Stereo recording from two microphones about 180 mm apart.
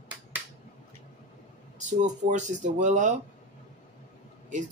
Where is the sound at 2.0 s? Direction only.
40° right (ahead or behind).